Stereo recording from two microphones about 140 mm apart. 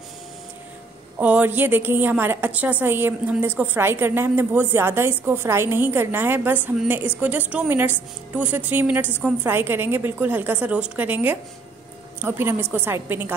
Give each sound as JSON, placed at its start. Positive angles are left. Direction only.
{"t": 1.2, "sound": "a woman's voice", "side_deg": -10}